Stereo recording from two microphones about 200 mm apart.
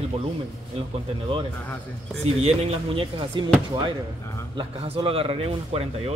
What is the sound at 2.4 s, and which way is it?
Speech, 30° right (ahead or behind).